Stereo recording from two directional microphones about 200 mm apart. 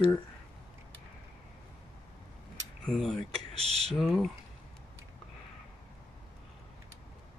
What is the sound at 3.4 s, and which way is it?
Speech, 30° right (ahead or behind).